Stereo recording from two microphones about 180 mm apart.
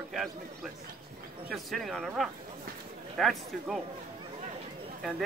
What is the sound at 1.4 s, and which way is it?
Speech, centre (ahead or behind).